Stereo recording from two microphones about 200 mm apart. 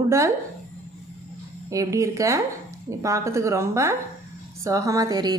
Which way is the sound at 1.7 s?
15° right (ahead or behind).